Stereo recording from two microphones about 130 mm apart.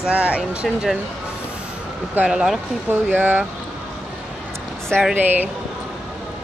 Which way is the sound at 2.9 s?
15° right (ahead or behind).